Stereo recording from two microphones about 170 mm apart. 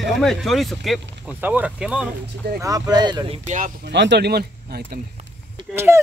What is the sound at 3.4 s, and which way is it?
Speech, 45° right (ahead or behind).